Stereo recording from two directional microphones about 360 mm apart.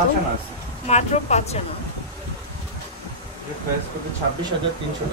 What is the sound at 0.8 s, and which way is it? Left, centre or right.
Speech, centre.